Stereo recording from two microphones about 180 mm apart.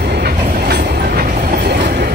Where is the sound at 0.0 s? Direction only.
65° right (ahead or behind).